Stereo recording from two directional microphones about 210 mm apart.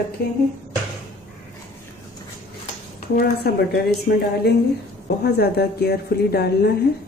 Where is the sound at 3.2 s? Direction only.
50° left (ahead or behind).